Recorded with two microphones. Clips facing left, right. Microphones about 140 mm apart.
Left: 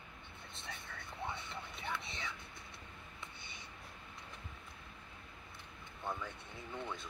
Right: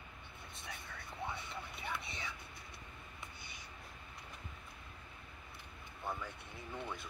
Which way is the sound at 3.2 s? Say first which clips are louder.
Left 1 dB; 25° left (ahead or behind).